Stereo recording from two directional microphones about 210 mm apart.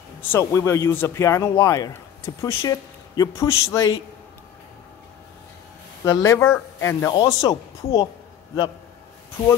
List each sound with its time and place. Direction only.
0.2 s speech: 10° left (ahead or behind)
6.0 s speech: 15° left (ahead or behind)